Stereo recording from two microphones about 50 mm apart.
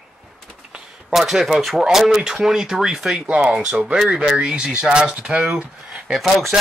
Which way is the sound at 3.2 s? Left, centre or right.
Right.